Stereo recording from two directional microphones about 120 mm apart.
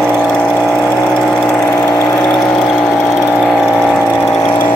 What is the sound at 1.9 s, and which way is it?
Vehicle, 20° left (ahead or behind).